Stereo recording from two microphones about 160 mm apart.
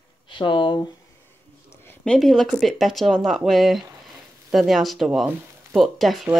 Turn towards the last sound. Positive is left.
turn(degrees=0)  # may be behind; listen again after turning